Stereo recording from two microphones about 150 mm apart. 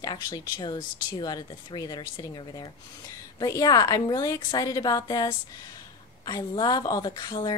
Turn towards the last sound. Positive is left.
turn(degrees=25)  # may be behind; listen again after turning